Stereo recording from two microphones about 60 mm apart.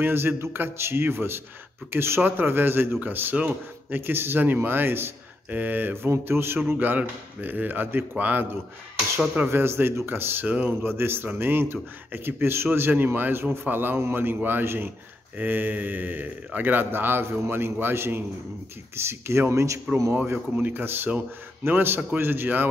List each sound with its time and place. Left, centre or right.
0.0 s a man's voice: right
9.5 s a man's voice: right
10.4 s speech: right
10.8 s a man's voice: right
20.5 s a man's voice: right